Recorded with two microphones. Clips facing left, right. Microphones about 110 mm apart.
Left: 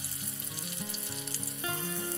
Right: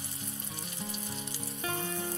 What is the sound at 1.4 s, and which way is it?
Music, 30° right (ahead or behind).